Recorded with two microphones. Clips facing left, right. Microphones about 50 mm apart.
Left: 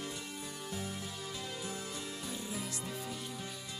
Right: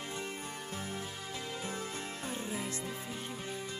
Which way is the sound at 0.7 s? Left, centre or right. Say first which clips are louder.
Even; right.